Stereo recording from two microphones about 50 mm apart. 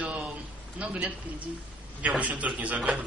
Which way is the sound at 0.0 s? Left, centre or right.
Right.